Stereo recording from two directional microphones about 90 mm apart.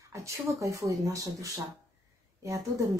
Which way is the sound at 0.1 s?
35° right (ahead or behind).